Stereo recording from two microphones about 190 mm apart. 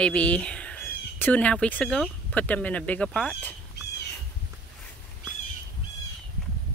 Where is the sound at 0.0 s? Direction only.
5° left (ahead or behind).